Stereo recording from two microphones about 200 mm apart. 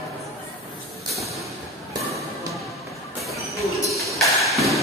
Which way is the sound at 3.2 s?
Centre (ahead or behind).